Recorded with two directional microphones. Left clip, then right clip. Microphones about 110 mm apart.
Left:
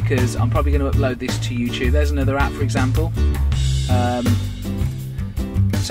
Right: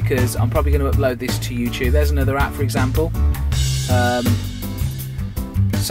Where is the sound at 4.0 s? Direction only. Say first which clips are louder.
Right 3 dB; 20° right (ahead or behind).